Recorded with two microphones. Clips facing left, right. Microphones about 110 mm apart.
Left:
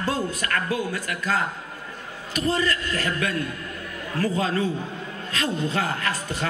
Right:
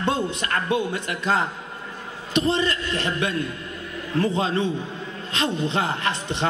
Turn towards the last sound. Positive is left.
turn(degrees=-25)  # may be behind; listen again after turning